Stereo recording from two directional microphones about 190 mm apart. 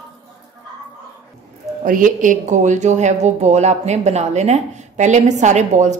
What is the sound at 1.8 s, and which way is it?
Speech, 45° right (ahead or behind).